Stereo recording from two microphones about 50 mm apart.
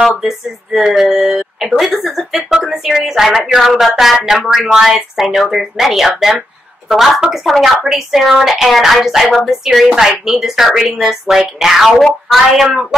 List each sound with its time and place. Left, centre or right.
0.2 s speech: centre